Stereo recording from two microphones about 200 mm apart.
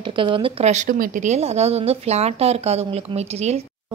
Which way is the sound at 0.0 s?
25° right (ahead or behind).